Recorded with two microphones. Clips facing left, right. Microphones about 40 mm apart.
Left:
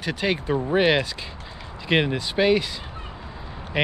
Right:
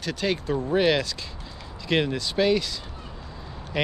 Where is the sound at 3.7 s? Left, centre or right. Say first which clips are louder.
Left 3 dB; left.